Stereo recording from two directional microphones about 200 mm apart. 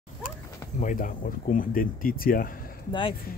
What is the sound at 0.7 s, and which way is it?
Speech, 40° left (ahead or behind).